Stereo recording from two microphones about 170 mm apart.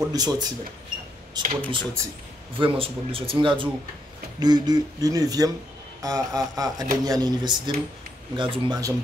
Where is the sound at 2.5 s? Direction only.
30° right (ahead or behind).